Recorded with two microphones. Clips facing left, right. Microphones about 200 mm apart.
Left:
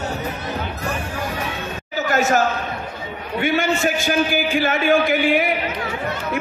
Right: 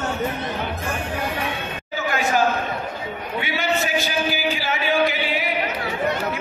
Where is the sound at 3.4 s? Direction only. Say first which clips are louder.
Left 5 dB; 50° left (ahead or behind).